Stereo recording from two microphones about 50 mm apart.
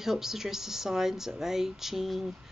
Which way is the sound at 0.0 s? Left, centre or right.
Centre.